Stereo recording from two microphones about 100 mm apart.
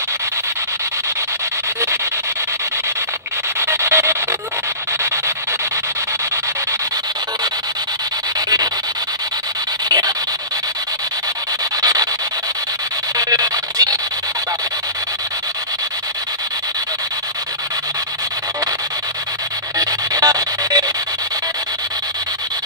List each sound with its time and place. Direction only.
3.6 s rub: 25° right (ahead or behind)
9.8 s rub: 40° right (ahead or behind)
11.8 s rub: 40° right (ahead or behind)
13.2 s a sound: 40° right (ahead or behind)
19.8 s music: 35° right (ahead or behind)